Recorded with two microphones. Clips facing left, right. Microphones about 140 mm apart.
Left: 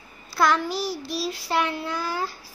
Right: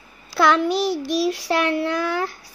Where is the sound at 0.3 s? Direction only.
75° right (ahead or behind).